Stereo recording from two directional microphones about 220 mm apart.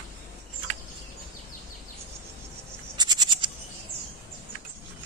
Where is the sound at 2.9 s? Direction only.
20° right (ahead or behind).